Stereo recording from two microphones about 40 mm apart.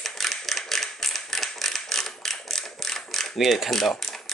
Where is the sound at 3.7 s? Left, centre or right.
Centre.